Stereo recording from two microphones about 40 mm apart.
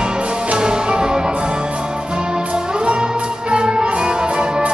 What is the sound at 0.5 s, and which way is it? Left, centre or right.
Music, right.